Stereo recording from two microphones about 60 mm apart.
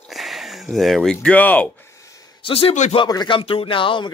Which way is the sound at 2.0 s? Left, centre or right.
Left.